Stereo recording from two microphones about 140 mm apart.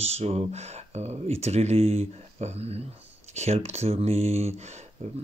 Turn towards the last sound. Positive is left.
turn(degrees=-50)  # may be behind; listen again after turning